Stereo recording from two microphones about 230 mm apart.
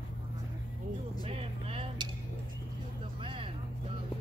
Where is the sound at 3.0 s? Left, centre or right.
Right.